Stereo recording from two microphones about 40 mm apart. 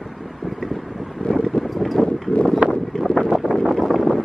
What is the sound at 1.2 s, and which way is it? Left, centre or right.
Wind noise, left.